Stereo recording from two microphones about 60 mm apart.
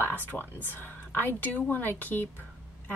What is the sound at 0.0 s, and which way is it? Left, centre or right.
Speech, left.